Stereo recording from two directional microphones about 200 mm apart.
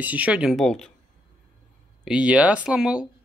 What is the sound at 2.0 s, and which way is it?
Speech, 5° right (ahead or behind).